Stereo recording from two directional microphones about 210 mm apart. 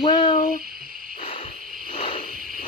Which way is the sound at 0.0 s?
20° left (ahead or behind).